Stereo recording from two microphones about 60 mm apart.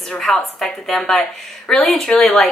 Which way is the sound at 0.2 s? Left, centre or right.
Centre.